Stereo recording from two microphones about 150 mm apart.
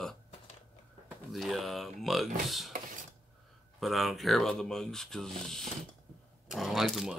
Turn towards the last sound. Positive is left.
turn(degrees=0)  # may be behind; listen again after turning